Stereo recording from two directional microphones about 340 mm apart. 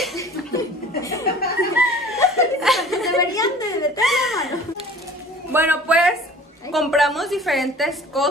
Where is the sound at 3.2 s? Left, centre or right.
Centre.